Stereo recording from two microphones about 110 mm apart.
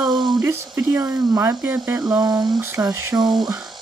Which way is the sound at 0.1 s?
40° right (ahead or behind).